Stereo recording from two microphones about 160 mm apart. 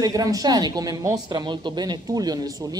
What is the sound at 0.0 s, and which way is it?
A woman's voice, 20° right (ahead or behind).